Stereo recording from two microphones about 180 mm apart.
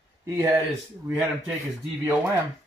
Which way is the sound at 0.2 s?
15° right (ahead or behind).